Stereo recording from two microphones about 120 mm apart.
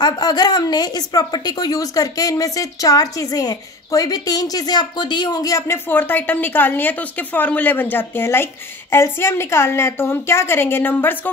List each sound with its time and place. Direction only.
0.0 s speech: 35° left (ahead or behind)
5.9 s a woman's voice: 15° left (ahead or behind)